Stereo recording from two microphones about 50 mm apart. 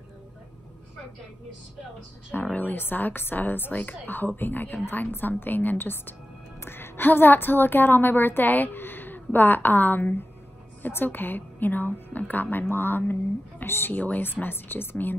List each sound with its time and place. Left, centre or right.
2.4 s a woman's voice: left
3.7 s a woman's voice: left
13.9 s a woman's voice: left
14.2 s speech: left